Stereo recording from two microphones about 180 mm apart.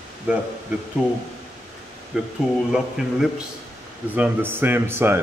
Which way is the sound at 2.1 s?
Centre (ahead or behind).